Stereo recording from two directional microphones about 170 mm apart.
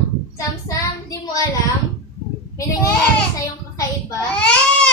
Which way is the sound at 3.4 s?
20° left (ahead or behind).